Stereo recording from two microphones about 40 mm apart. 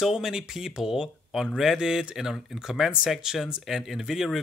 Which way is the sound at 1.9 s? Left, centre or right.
Centre.